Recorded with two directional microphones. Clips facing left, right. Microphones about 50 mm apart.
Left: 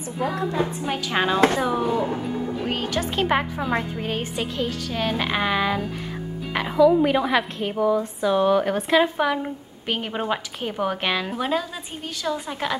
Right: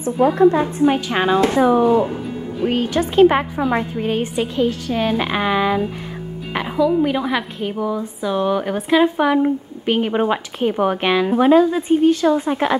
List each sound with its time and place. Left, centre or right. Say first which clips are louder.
0.0 s a woman's voice: right 12 dB; right
0.8 s a woman's voice: right 8 dB; centre
7.0 s a woman's voice: right 1 dB; centre; by 12.7 s right